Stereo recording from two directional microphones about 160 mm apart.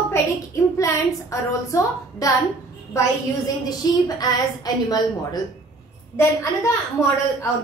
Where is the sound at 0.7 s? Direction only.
20° left (ahead or behind).